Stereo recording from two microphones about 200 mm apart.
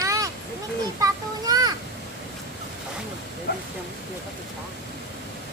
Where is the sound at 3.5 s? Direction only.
55° left (ahead or behind).